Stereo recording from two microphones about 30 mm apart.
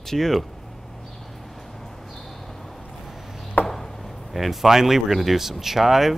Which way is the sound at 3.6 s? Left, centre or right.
Left.